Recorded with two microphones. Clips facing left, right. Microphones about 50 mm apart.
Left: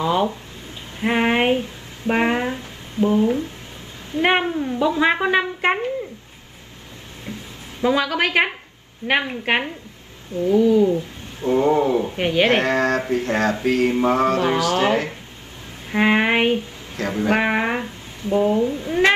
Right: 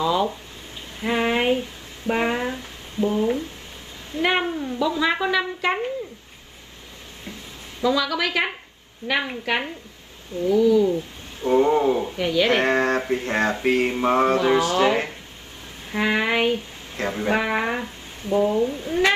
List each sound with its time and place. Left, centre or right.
0.0 s a woman's voice: left
7.8 s a woman's voice: left
9.0 s a woman's voice: left
12.6 s speech: right
14.7 s a woman's voice: left